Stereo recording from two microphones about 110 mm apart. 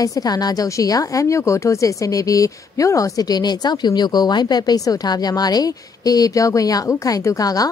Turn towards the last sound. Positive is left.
turn(degrees=35)  # may be behind; listen again after turning